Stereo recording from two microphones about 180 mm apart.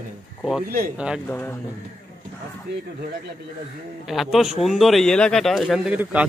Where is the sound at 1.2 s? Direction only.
10° left (ahead or behind).